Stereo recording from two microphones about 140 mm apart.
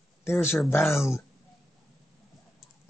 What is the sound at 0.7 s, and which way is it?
Speech, 20° left (ahead or behind).